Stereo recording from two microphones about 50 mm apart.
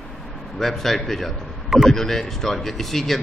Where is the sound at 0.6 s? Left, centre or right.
Centre.